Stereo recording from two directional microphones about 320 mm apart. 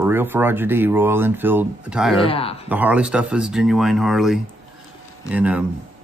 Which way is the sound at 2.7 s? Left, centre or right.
Centre.